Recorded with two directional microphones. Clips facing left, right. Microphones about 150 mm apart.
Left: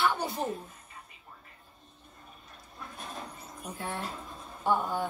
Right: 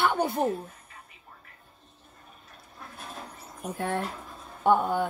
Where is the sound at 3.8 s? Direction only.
55° right (ahead or behind).